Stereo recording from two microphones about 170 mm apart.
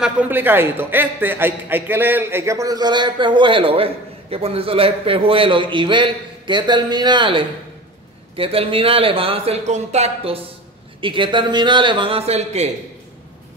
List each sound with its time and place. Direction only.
0.0 s a man's voice: 10° right (ahead or behind); by 12.6 s 40° right (ahead or behind)